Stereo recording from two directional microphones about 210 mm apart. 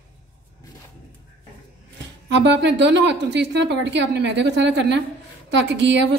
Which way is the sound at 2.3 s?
55° right (ahead or behind).